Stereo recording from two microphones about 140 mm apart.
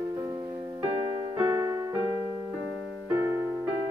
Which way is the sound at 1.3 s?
10° right (ahead or behind).